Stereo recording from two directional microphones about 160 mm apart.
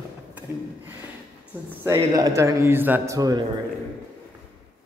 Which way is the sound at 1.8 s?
20° right (ahead or behind).